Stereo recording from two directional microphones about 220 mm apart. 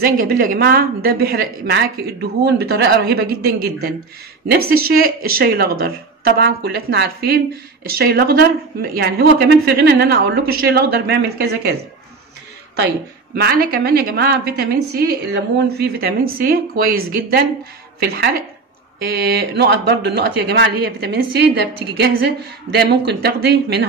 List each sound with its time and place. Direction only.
0.0 s a woman's voice: 40° right (ahead or behind)
13.3 s a woman's voice: 45° right (ahead or behind)